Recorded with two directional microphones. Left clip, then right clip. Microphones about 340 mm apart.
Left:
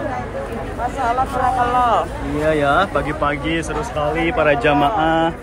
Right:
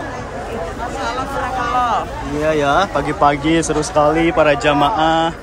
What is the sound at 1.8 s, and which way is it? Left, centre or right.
Speech, centre.